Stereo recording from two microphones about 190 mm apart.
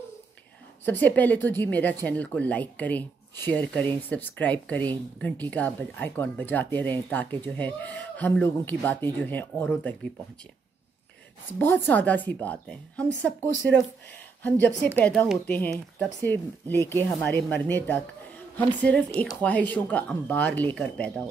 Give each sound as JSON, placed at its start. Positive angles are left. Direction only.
{"t": 0.8, "sound": "speech", "side_deg": 10}
{"t": 11.4, "sound": "speech", "side_deg": 10}
{"t": 15.0, "sound": "speech", "side_deg": 5}